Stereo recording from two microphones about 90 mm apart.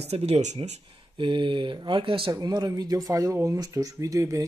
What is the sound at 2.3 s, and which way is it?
Speech, 50° right (ahead or behind).